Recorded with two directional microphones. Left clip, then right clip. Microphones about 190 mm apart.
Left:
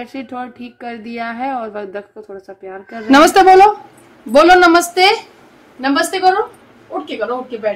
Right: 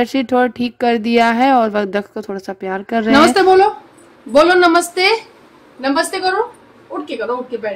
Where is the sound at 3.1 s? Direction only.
40° left (ahead or behind); by 6.3 s 15° left (ahead or behind).